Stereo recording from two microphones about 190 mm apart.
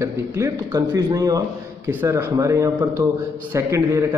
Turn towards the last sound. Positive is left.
turn(degrees=-15)  # may be behind; listen again after turning